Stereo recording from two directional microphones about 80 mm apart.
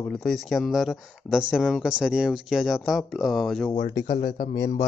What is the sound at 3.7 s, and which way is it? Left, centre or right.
Speech, left.